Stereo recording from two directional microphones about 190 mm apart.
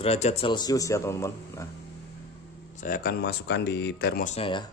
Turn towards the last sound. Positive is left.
turn(degrees=25)  # may be behind; listen again after turning